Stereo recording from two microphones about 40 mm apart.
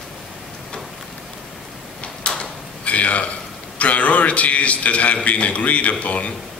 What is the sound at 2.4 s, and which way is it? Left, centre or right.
Drawer open or close, left.